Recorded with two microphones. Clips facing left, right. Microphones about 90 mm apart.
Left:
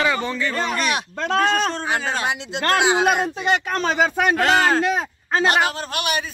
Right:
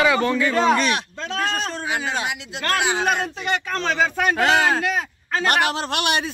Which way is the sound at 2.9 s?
15° left (ahead or behind).